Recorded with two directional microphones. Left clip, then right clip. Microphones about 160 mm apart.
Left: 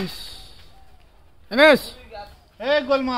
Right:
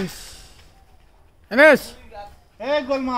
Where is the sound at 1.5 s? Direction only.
15° right (ahead or behind).